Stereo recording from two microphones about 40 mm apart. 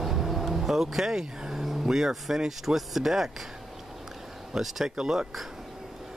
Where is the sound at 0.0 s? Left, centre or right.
Centre.